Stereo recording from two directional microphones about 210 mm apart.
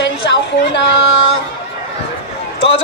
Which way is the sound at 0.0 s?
55° left (ahead or behind).